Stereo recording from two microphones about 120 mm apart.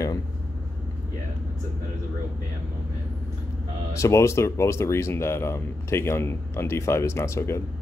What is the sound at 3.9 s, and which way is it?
Speech, 25° left (ahead or behind).